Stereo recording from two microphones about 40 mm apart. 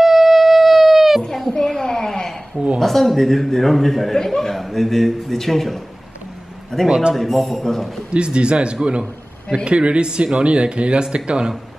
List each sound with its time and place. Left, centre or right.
0.0 s howl: centre
1.2 s a sound: centre
2.8 s speech: centre
6.9 s speech: right
7.2 s speech: centre
8.1 s speech: right